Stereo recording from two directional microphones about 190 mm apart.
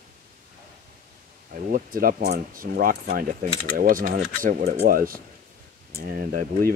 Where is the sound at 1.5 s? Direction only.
45° right (ahead or behind).